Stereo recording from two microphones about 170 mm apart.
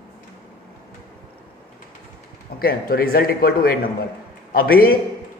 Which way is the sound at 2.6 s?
60° left (ahead or behind).